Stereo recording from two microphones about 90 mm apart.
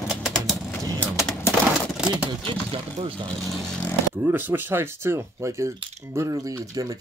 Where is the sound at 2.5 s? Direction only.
90° right.